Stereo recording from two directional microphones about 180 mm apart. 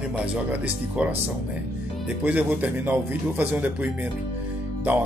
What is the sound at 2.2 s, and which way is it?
Speech, 10° right (ahead or behind).